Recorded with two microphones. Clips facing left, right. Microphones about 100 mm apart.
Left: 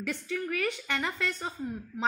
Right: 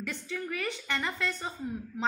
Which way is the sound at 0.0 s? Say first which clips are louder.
Left 3 dB; 5° left (ahead or behind).